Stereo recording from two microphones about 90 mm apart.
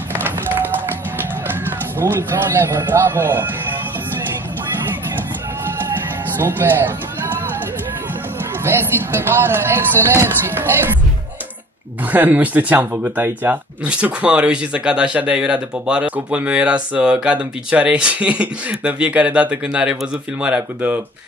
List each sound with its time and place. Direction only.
1.1 s speech: 25° right (ahead or behind)
6.3 s speech: 25° right (ahead or behind)
8.6 s speech: 25° right (ahead or behind)
12.1 s speech: 20° right (ahead or behind)